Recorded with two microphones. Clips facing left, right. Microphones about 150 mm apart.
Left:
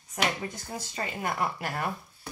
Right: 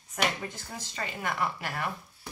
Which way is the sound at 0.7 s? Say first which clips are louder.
Left 3 dB; 35° left (ahead or behind).